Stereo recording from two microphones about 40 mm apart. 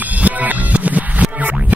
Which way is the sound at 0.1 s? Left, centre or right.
Right.